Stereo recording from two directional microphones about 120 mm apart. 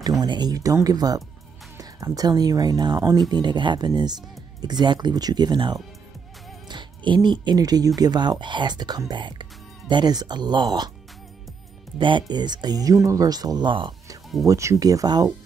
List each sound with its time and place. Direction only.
0.2 s speech: 35° right (ahead or behind)
12.0 s speech: 40° right (ahead or behind)
14.4 s speech: 25° right (ahead or behind)